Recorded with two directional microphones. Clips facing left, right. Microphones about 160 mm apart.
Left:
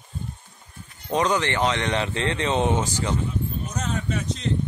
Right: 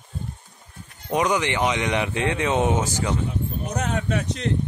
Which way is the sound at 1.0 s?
10° right (ahead or behind).